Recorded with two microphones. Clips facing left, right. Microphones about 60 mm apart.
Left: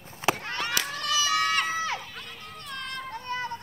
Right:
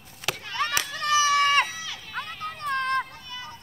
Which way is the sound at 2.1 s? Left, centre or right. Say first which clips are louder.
Right 8 dB; right.